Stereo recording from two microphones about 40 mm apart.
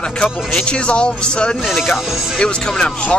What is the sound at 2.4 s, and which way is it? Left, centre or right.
Speech, left.